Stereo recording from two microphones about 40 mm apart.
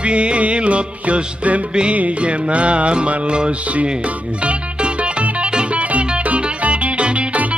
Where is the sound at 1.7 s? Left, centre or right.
Right.